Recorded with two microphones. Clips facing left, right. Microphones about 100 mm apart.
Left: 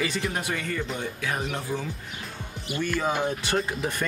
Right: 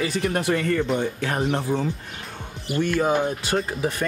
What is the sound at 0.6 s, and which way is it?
Speech, 35° right (ahead or behind).